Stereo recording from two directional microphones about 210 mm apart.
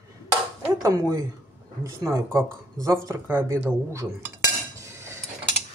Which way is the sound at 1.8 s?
15° right (ahead or behind).